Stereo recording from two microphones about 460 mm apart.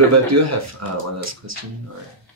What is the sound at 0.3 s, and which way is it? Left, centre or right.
Speech, right.